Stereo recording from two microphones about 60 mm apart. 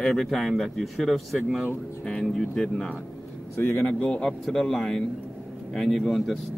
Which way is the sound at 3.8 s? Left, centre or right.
Centre.